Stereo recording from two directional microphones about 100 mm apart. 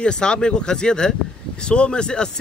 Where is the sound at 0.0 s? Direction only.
10° left (ahead or behind).